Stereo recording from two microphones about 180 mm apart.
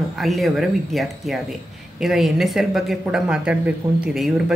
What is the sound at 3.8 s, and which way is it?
Speech, 20° right (ahead or behind).